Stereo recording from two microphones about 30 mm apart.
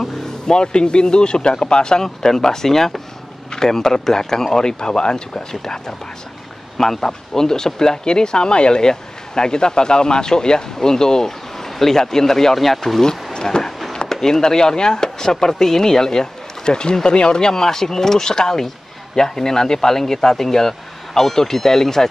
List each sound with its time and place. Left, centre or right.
0.5 s speech: left
2.0 s speech: centre
12.5 s speech: centre
13.0 s speech: left